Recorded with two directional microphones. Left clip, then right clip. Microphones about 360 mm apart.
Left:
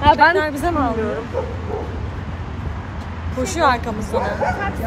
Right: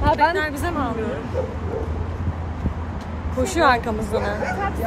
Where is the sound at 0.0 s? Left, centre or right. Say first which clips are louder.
Left 6 dB; left.